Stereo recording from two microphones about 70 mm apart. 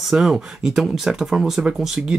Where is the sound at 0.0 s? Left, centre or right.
Centre.